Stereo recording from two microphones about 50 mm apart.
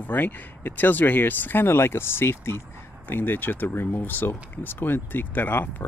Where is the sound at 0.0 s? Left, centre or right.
Left.